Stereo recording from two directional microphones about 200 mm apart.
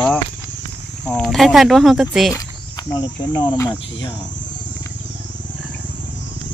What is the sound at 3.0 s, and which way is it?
Speech, 20° left (ahead or behind).